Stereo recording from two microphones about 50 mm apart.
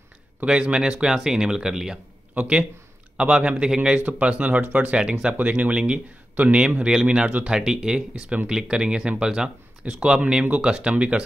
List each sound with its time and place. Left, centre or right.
0.5 s speech: right
2.3 s speech: right
4.0 s speech: right
8.1 s speech: right